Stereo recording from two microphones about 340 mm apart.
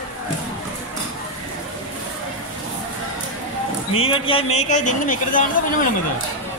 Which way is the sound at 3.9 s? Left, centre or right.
Centre.